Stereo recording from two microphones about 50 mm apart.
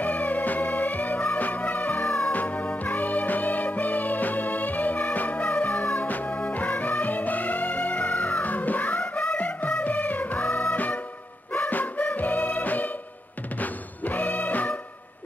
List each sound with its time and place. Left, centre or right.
0.0 s music: left